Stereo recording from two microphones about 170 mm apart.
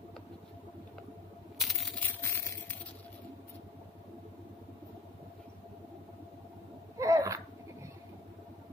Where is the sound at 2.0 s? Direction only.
10° left (ahead or behind).